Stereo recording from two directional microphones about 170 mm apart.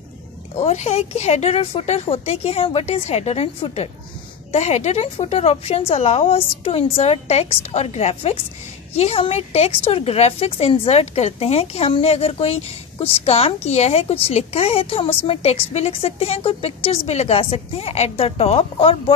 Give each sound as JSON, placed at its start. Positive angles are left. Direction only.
{"t": 0.6, "sound": "a woman's voice", "side_deg": 40}